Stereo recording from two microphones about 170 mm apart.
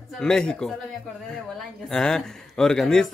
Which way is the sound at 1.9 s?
5° left (ahead or behind).